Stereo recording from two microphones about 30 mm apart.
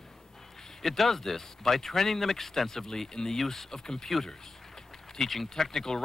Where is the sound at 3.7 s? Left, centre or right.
Left.